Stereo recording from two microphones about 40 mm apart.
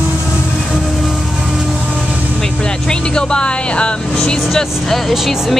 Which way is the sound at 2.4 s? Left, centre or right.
Left.